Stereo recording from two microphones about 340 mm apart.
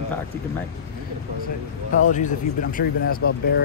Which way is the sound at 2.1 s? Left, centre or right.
Left.